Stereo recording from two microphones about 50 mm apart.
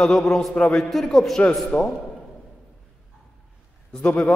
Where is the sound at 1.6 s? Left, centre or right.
Centre.